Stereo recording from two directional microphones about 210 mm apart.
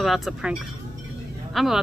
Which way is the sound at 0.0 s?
Centre (ahead or behind).